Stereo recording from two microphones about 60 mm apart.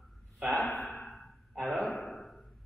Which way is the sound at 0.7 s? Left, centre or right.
Centre.